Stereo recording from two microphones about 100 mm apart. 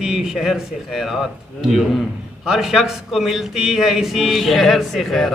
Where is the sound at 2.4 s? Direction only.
5° right (ahead or behind).